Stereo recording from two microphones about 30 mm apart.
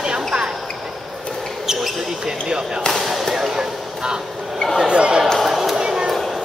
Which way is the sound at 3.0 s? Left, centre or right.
Centre.